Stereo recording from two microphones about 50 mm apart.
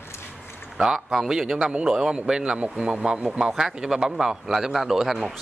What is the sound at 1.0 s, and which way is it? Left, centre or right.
Speech, centre.